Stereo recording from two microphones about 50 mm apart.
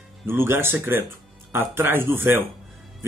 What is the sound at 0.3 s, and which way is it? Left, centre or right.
Speech, right.